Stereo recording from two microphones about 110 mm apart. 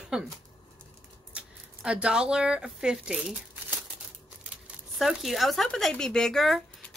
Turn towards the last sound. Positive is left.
turn(degrees=5)  # may be behind; listen again after turning